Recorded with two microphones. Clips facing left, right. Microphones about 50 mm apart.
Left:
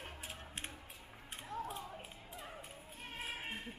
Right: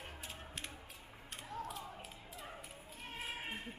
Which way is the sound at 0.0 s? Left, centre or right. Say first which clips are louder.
Left 1 dB; left.